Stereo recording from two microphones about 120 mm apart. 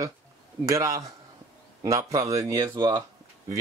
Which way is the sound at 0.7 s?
30° right (ahead or behind).